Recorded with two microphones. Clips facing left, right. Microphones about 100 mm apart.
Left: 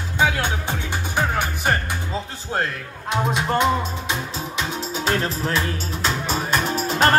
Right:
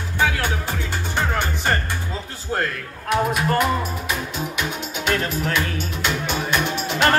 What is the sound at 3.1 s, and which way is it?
Music, 25° left (ahead or behind).